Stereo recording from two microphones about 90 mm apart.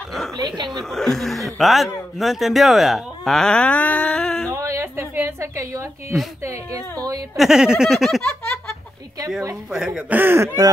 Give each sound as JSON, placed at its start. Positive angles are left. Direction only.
{"t": 0.4, "sound": "speech", "side_deg": -55}
{"t": 0.8, "sound": "a man's voice", "side_deg": 5}
{"t": 4.5, "sound": "a sound", "side_deg": -30}
{"t": 6.4, "sound": "speech", "side_deg": -35}
{"t": 7.3, "sound": "a man's voice", "side_deg": -5}
{"t": 9.7, "sound": "a man's voice", "side_deg": -5}
{"t": 10.0, "sound": "speech", "side_deg": -20}